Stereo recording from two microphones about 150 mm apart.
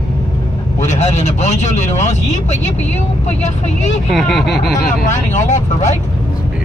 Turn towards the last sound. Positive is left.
turn(degrees=50)  # may be behind; listen again after turning